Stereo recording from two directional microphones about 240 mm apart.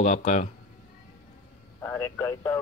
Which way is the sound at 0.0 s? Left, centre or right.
Left.